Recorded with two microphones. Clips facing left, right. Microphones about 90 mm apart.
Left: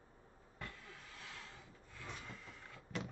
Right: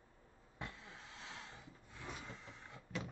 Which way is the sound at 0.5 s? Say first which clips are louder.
Right 2 dB; 20° right (ahead or behind).